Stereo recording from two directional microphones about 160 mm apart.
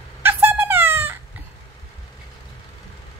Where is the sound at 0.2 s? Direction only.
15° right (ahead or behind).